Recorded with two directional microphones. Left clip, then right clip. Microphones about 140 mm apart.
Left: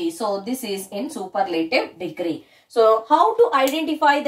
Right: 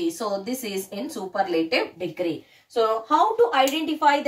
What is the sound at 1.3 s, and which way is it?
Speech, 5° left (ahead or behind).